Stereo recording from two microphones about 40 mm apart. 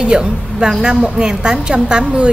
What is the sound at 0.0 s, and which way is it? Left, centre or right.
A woman's voice, right.